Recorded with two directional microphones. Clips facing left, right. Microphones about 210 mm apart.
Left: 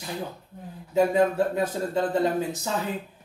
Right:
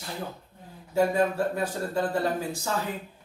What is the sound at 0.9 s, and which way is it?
Speech, 20° left (ahead or behind).